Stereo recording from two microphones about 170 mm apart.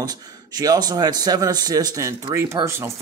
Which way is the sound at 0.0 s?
25° right (ahead or behind).